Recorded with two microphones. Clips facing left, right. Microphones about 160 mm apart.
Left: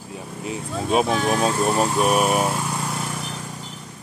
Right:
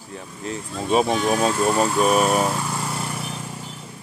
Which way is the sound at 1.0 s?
30° right (ahead or behind).